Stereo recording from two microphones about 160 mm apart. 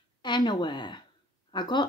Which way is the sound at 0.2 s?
30° left (ahead or behind).